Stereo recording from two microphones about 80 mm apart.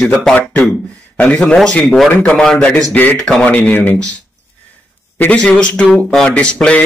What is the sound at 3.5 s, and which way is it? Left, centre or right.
Speech, centre.